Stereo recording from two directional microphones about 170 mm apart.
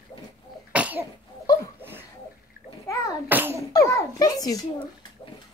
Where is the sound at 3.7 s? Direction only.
20° left (ahead or behind).